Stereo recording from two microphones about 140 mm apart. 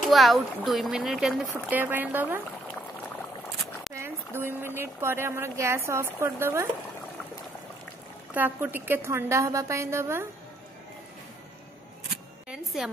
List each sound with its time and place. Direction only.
0.0 s speech: centre (ahead or behind)
1.7 s speech: 15° right (ahead or behind)
3.9 s speech: 15° right (ahead or behind)
8.4 s a woman's voice: 15° right (ahead or behind)
12.4 s speech: 5° right (ahead or behind)